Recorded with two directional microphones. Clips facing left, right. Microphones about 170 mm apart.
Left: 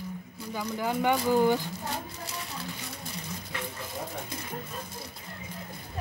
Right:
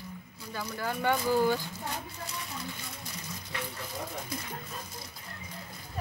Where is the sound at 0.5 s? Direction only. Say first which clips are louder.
Left 4 dB; 15° left (ahead or behind).